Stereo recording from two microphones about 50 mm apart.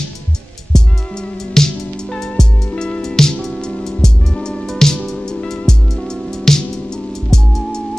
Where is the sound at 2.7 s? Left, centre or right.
Left.